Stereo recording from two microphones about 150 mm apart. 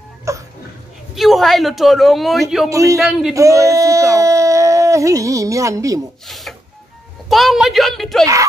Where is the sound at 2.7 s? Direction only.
20° right (ahead or behind).